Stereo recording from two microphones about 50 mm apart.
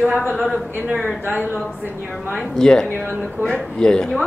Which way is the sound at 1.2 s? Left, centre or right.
Right.